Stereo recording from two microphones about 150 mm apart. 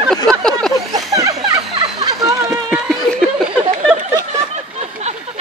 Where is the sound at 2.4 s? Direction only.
5° right (ahead or behind).